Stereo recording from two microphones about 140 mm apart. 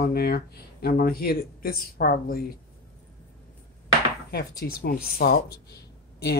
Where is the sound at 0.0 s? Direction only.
90° left.